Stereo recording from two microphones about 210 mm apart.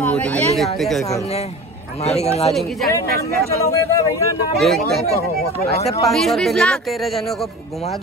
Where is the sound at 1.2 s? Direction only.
30° left (ahead or behind).